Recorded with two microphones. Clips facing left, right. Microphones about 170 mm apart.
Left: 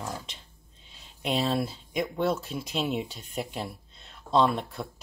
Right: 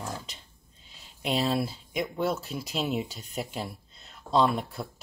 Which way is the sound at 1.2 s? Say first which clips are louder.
Even; centre (ahead or behind).